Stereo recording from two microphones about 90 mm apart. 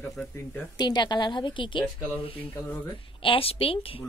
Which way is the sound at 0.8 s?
50° left (ahead or behind).